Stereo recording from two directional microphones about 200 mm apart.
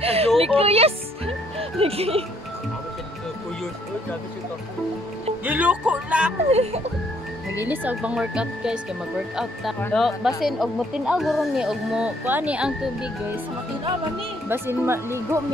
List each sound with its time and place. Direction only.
0.0 s a sound: 30° right (ahead or behind)
0.6 s music: 30° right (ahead or behind)
5.4 s speech: 10° right (ahead or behind)
6.5 s speech: 30° right (ahead or behind)
7.6 s speech: 10° right (ahead or behind)
9.8 s speech: 5° left (ahead or behind)
14.5 s speech: 10° right (ahead or behind)